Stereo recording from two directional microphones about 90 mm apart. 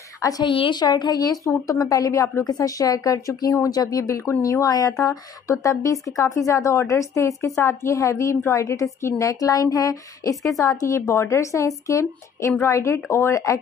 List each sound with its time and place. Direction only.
0.2 s a woman's voice: 40° left (ahead or behind)
0.5 s a woman's voice: 70° left (ahead or behind)
0.7 s a woman's voice: 50° left (ahead or behind); by 13.6 s 35° left (ahead or behind)